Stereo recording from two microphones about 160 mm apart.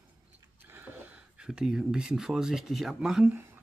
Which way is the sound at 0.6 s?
15° right (ahead or behind).